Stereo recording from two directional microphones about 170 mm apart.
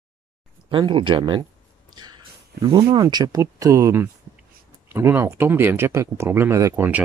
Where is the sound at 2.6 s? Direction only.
30° right (ahead or behind).